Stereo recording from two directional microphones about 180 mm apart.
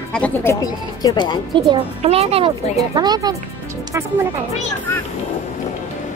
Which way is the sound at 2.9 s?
25° right (ahead or behind).